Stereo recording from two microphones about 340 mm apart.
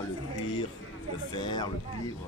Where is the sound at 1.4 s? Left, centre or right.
Centre.